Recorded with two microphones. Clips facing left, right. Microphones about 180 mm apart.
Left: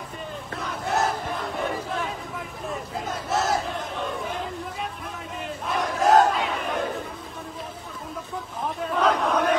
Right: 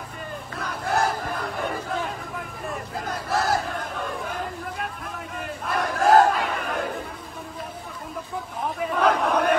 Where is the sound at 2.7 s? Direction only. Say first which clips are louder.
Even; centre (ahead or behind).